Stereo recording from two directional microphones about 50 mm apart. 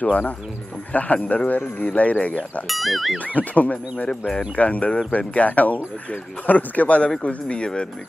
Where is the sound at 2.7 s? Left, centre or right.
Centre.